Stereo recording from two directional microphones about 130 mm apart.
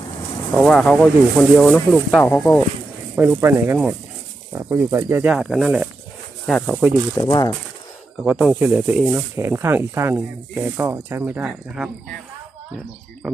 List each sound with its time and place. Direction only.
0.6 s speech: 5° left (ahead or behind)
2.2 s speech: 20° left (ahead or behind)
3.2 s speech: 15° right (ahead or behind); by 6.8 s centre (ahead or behind)
7.2 s speech: 30° left (ahead or behind)
8.2 s speech: 5° right (ahead or behind)